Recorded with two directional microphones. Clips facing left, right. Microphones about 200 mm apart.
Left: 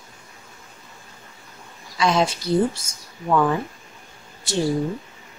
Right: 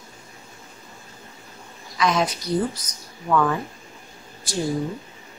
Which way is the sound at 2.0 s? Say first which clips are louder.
Left 2 dB; 30° left (ahead or behind).